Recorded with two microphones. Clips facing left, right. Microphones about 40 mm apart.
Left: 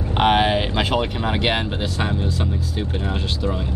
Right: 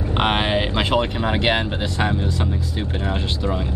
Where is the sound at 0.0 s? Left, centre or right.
Centre.